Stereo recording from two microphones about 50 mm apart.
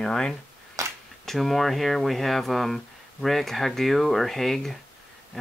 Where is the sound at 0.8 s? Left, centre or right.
Right.